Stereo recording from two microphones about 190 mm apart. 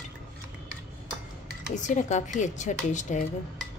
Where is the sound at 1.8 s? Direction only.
40° left (ahead or behind).